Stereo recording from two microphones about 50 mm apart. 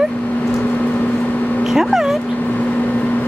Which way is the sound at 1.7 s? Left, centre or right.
Centre.